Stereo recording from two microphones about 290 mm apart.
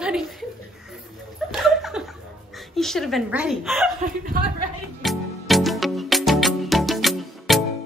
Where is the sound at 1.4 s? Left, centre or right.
Centre.